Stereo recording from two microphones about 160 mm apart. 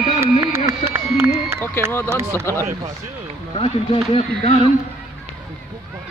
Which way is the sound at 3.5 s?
35° left (ahead or behind).